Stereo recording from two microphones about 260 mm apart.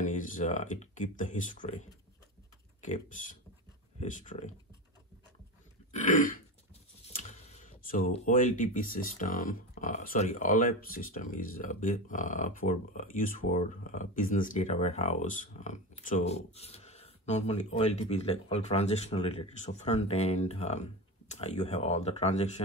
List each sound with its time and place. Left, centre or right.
0.0 s speech: left
5.9 s throat clearing: left
7.2 s speech: left